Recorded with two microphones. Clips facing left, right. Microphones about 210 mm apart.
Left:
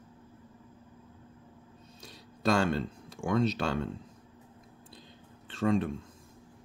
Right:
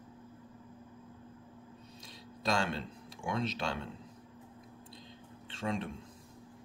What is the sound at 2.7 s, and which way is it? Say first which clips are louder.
Speech: left 7 dB; 45° left (ahead or behind).